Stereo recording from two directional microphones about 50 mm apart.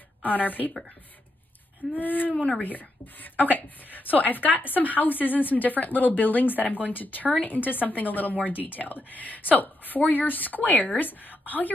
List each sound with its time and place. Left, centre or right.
0.2 s a woman's voice: left
1.8 s a woman's voice: left
2.3 s speech: left
2.6 s a woman's voice: left